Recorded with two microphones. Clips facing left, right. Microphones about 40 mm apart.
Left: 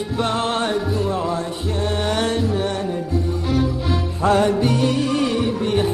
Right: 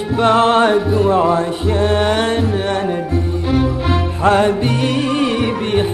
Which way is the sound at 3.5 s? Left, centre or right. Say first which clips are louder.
Right 5 dB; right.